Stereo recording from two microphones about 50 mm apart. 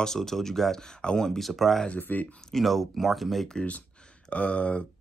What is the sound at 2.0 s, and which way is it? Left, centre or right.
Speech, left.